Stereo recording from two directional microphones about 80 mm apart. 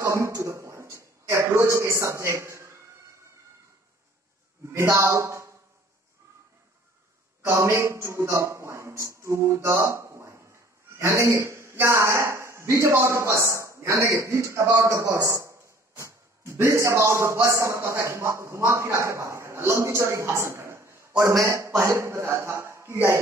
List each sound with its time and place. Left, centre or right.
0.0 s a sound: right
4.7 s speech: right
7.4 s a man's voice: right